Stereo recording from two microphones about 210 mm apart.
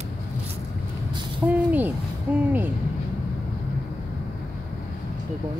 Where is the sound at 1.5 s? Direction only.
10° right (ahead or behind).